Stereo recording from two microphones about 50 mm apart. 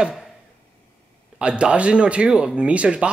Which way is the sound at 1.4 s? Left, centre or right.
Right.